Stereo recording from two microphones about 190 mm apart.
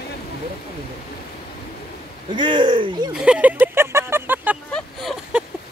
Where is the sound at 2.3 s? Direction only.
25° right (ahead or behind).